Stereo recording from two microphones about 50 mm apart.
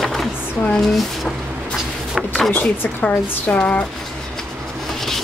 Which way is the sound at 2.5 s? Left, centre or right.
Left.